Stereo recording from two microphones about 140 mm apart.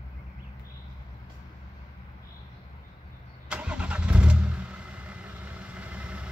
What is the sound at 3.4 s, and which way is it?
Vehicle, 10° right (ahead or behind).